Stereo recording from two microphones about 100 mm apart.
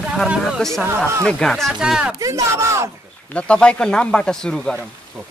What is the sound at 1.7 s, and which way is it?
Speech, 10° right (ahead or behind).